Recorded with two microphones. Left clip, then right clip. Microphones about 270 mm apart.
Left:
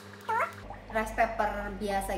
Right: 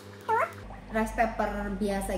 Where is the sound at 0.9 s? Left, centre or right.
Centre.